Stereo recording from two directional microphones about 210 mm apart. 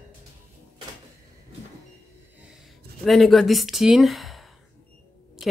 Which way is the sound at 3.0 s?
Centre (ahead or behind).